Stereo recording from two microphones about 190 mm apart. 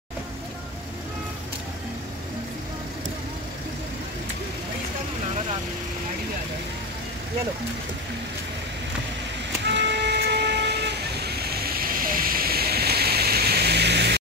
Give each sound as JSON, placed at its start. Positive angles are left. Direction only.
{"t": 9.8, "sound": "vehicle", "side_deg": -65}